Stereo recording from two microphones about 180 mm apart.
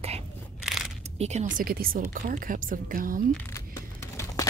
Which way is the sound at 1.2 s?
40° right (ahead or behind).